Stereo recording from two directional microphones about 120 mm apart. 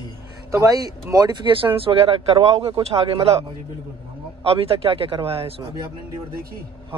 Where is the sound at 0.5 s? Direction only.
30° right (ahead or behind); by 3.3 s 55° right (ahead or behind).